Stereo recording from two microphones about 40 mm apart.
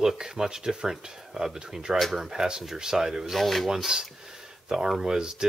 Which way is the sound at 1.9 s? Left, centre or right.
Centre.